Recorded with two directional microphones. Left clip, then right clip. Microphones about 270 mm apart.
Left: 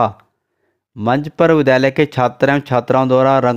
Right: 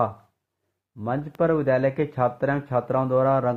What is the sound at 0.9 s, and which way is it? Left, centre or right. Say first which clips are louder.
Speech: left 11 dB; left.